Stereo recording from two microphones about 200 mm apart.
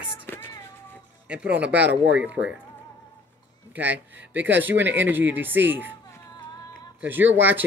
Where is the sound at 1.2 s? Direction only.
5° right (ahead or behind).